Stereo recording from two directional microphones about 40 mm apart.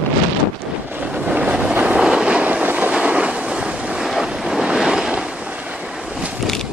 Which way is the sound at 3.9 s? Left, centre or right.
Centre.